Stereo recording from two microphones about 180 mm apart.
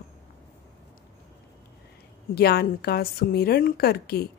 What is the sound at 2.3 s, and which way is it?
Speech, 60° left (ahead or behind).